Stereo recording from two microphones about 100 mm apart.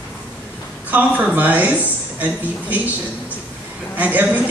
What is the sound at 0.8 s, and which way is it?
Speech, 15° right (ahead or behind).